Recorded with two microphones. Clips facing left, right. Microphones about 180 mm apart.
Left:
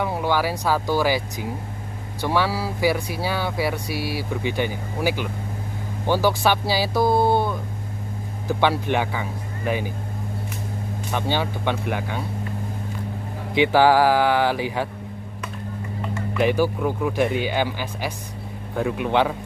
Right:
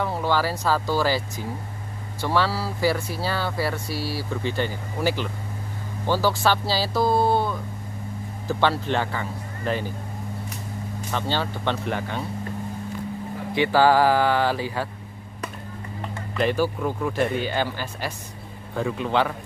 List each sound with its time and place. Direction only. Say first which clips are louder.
0.0 s speech: left 1 dB; 15° left (ahead or behind)
11.1 s speech: left 2 dB; 15° left (ahead or behind)
13.6 s speech: left 2 dB; 15° left (ahead or behind)
16.3 s speech: left 2 dB; 15° left (ahead or behind)